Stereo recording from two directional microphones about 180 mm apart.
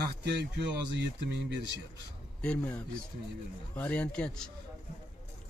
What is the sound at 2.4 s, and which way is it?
Speech, 5° left (ahead or behind).